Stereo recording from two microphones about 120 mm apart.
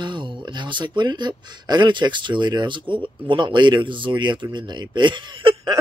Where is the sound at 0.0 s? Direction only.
40° right (ahead or behind).